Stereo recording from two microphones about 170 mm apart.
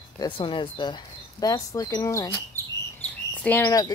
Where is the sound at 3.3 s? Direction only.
10° left (ahead or behind).